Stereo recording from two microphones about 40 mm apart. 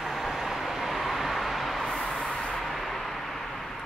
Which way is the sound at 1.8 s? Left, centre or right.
Centre.